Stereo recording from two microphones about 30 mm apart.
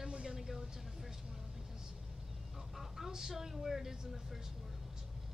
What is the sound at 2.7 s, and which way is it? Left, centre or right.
A woman's voice, centre.